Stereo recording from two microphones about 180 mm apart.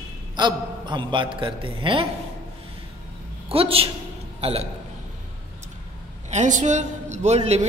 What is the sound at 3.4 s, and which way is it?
A man's voice, 30° right (ahead or behind).